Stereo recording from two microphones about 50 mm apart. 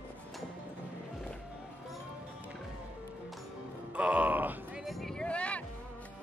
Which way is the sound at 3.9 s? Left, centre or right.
Right.